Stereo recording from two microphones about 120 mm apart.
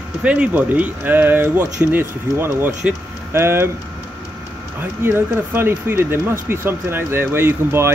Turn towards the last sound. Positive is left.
turn(degrees=-20)  # may be behind; listen again after turning